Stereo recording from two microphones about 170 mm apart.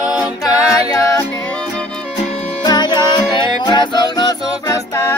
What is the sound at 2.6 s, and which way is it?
Music, 25° left (ahead or behind).